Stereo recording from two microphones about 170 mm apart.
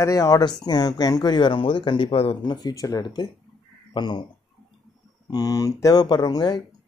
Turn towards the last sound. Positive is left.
turn(degrees=25)  # may be behind; listen again after turning